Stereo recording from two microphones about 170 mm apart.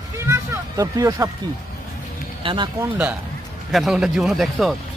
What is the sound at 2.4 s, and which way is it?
Speech, 30° right (ahead or behind).